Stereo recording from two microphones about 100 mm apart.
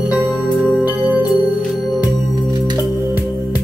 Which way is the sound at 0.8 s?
20° right (ahead or behind).